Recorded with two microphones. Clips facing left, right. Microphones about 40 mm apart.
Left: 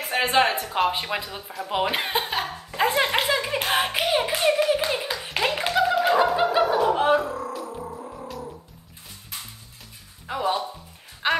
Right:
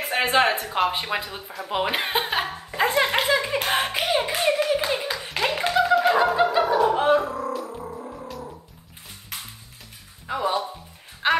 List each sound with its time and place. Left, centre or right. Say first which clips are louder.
0.0 s music: right 1 dB; centre
0.7 s speech: even; centre
2.1 s laughter: right 2 dB; centre
2.8 s clapping: right 1 dB; centre
5.8 s music: right 1 dB; centre
6.3 s turkey: right 1 dB; centre
6.6 s music: even; centre
8.2 s a sound: even; centre
10.2 s a sound: right 1 dB; centre